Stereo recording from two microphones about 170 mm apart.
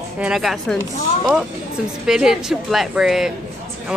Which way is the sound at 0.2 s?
Centre (ahead or behind).